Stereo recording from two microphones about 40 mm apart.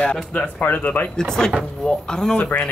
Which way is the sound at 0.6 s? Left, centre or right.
Left.